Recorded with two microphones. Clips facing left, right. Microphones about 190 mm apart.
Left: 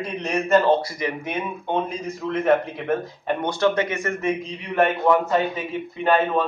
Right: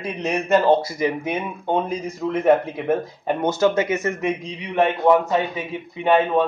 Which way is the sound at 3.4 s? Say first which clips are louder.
Right 3 dB; 25° right (ahead or behind).